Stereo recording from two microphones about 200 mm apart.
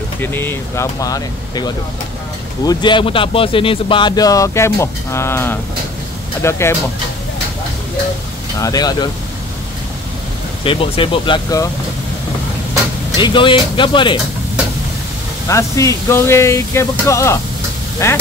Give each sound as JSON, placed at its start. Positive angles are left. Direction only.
{"t": 0.2, "sound": "speech", "side_deg": 10}
{"t": 8.5, "sound": "speech", "side_deg": 20}
{"t": 10.6, "sound": "speech", "side_deg": 25}
{"t": 13.2, "sound": "speech", "side_deg": 25}
{"t": 15.4, "sound": "speech", "side_deg": 15}